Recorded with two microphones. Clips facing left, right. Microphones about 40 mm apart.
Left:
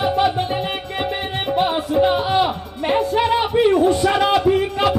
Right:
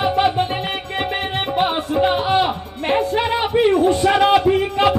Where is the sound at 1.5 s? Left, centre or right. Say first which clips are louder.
Left 1 dB; right.